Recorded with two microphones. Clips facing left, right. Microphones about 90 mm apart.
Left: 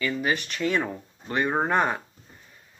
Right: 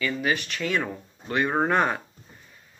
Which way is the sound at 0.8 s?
15° left (ahead or behind).